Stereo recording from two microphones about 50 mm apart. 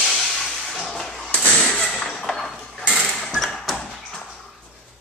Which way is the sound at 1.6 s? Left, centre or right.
Centre.